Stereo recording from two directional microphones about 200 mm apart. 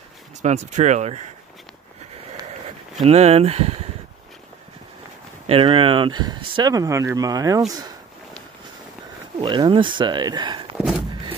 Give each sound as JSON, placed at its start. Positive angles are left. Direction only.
{"t": 0.4, "sound": "speech", "side_deg": -35}
{"t": 3.1, "sound": "speech", "side_deg": -30}
{"t": 5.5, "sound": "speech", "side_deg": -25}
{"t": 9.4, "sound": "speech", "side_deg": -20}
{"t": 10.8, "sound": "a sound", "side_deg": 0}